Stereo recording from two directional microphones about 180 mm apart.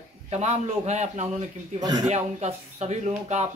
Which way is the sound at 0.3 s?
35° right (ahead or behind).